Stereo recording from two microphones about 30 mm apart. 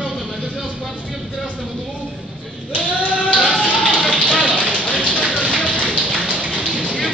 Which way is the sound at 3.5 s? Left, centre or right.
Left.